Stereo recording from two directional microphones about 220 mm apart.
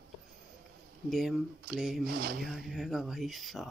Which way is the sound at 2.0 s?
40° right (ahead or behind).